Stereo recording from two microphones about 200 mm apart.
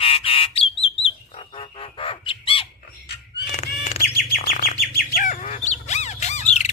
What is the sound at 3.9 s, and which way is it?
Bird, 50° left (ahead or behind).